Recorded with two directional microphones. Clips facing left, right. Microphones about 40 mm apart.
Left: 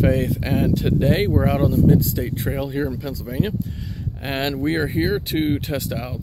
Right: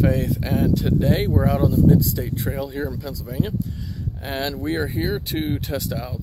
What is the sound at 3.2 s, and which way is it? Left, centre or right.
Speech, left.